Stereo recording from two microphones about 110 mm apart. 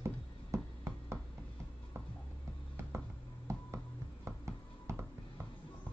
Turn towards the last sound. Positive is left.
turn(degrees=-25)  # may be behind; listen again after turning